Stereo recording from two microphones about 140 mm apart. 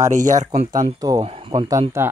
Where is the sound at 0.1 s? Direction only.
60° right (ahead or behind).